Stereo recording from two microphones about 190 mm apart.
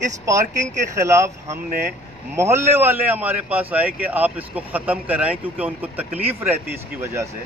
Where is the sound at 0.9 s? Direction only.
15° right (ahead or behind).